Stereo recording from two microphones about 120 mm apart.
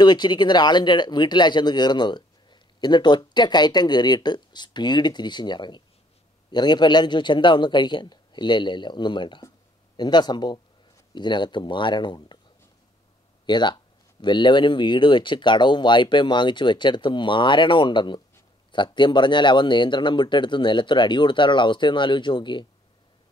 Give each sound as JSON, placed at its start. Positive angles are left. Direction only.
{"t": 0.0, "sound": "speech", "side_deg": 40}
{"t": 13.5, "sound": "speech", "side_deg": 40}